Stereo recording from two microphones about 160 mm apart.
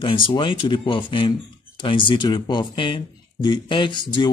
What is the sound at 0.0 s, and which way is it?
Speech, 30° left (ahead or behind).